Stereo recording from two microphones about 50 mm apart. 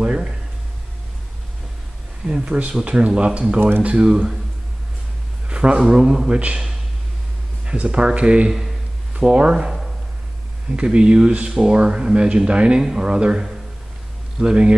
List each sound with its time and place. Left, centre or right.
0.0 s a sound: centre
2.2 s speech: centre
5.5 s speech: right
8.5 s speech: centre
9.1 s speech: right
10.8 s speech: right